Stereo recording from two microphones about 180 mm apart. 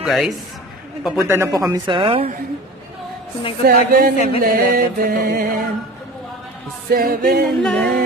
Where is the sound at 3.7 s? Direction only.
50° right (ahead or behind).